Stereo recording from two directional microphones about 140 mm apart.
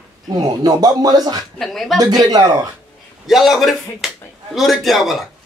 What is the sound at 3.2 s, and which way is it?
A man's voice, centre (ahead or behind).